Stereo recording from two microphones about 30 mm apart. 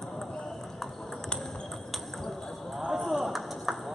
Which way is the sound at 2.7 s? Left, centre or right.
Centre.